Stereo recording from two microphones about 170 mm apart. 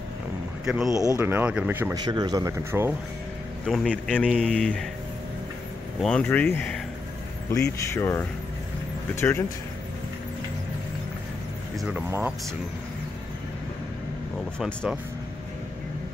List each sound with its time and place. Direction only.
0.7 s speech: 5° right (ahead or behind)
0.9 s speech: 20° right (ahead or behind)
2.0 s speech: 25° right (ahead or behind)
3.6 s speech: 5° left (ahead or behind)
6.0 s speech: 10° left (ahead or behind)
7.8 s speech: 15° left (ahead or behind)
12.1 s speech: 10° right (ahead or behind)
14.6 s speech: centre (ahead or behind)